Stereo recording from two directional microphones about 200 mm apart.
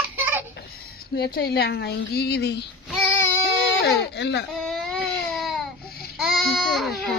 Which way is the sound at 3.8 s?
55° left (ahead or behind).